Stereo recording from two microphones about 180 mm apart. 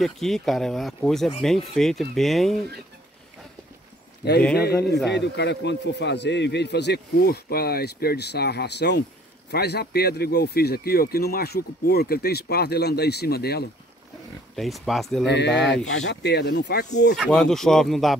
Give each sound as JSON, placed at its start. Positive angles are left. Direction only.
{"t": 0.0, "sound": "speech", "side_deg": 0}
{"t": 4.6, "sound": "a man's voice", "side_deg": 60}
{"t": 14.5, "sound": "speech", "side_deg": 0}
{"t": 15.2, "sound": "a man's voice", "side_deg": 75}
{"t": 17.2, "sound": "speech", "side_deg": 5}